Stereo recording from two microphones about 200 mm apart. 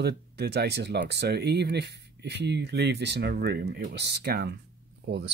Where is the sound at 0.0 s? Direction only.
55° right (ahead or behind).